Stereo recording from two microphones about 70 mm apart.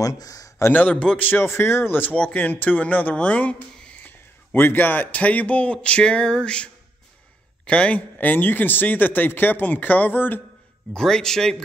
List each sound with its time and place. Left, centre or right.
0.0 s a sound: left
0.7 s speech: left
1.4 s speech: left
11.0 s a man's voice: centre